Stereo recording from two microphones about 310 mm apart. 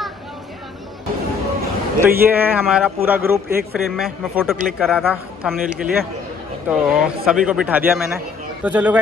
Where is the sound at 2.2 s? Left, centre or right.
Centre.